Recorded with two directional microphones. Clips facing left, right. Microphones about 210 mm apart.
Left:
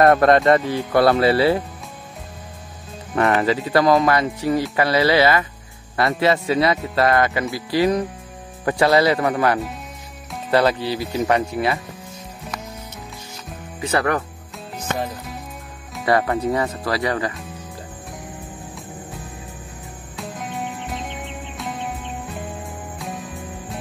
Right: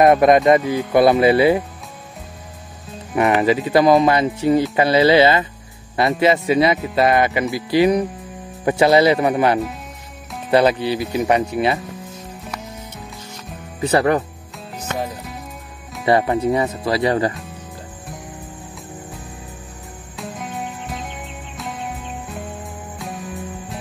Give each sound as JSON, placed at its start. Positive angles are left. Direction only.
{"t": 0.0, "sound": "speech", "side_deg": -15}
{"t": 3.2, "sound": "speech", "side_deg": -15}
{"t": 13.8, "sound": "speech", "side_deg": -30}
{"t": 14.8, "sound": "music", "side_deg": -5}
{"t": 16.1, "sound": "speech", "side_deg": -20}
{"t": 20.2, "sound": "music", "side_deg": 0}
{"t": 22.9, "sound": "music", "side_deg": 0}